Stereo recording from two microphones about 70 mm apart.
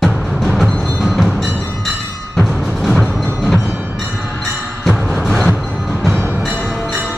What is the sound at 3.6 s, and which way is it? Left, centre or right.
Music, centre.